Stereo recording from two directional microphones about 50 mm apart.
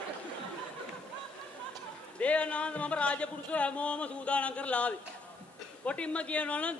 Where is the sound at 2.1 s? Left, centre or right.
Left.